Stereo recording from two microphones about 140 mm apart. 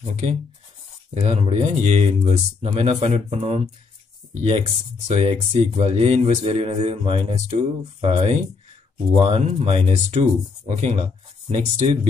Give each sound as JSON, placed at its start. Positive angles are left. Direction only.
{"t": 0.1, "sound": "speech", "side_deg": -60}